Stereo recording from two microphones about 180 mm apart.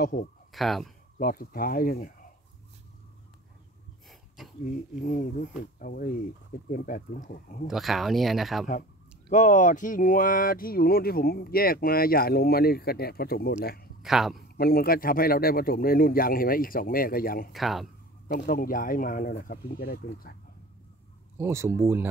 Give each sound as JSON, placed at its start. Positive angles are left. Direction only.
{"t": 0.0, "sound": "speech", "side_deg": 45}
{"t": 0.5, "sound": "speech", "side_deg": 0}
{"t": 1.1, "sound": "speech", "side_deg": 55}
{"t": 4.6, "sound": "speech", "side_deg": 45}
{"t": 7.6, "sound": "speech", "side_deg": 0}
{"t": 9.3, "sound": "speech", "side_deg": 45}
{"t": 14.0, "sound": "speech", "side_deg": 0}
{"t": 14.6, "sound": "speech", "side_deg": 55}
{"t": 17.5, "sound": "speech", "side_deg": 0}
{"t": 18.3, "sound": "speech", "side_deg": 55}
{"t": 21.4, "sound": "speech", "side_deg": -15}